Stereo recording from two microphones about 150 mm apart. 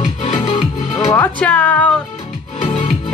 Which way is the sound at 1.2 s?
10° left (ahead or behind).